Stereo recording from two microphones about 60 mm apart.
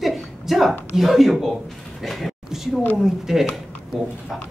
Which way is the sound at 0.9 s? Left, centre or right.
Centre.